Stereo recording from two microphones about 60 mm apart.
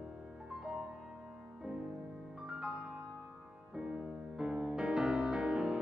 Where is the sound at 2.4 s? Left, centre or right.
Centre.